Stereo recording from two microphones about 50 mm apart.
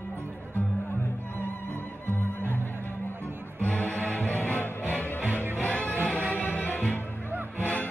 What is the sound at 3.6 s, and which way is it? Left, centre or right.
Music, left.